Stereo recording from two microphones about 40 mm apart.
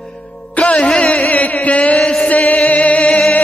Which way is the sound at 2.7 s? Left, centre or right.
Left.